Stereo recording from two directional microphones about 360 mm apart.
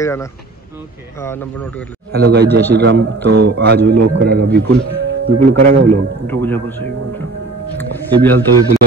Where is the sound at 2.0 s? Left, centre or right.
Right.